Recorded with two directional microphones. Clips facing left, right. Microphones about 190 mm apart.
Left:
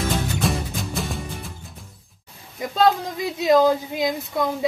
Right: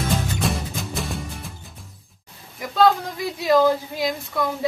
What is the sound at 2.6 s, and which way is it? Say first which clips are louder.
A woman's voice: right 1 dB; 20° left (ahead or behind).